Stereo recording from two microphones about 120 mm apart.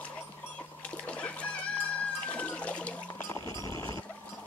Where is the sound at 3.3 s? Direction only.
25° left (ahead or behind).